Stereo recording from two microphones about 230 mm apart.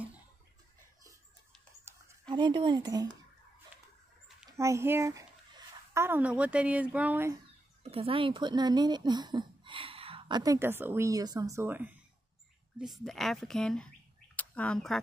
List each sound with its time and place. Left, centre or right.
1.9 s speech: centre
4.5 s speech: centre
7.8 s speech: right; by 15.0 s centre